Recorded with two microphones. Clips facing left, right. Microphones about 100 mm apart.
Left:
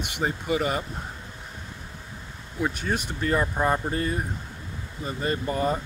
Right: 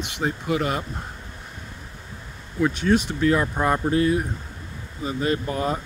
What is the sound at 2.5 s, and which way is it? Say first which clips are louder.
Speech: right 7 dB; 5° left (ahead or behind).